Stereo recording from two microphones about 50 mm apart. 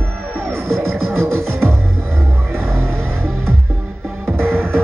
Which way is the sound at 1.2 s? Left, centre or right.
Right.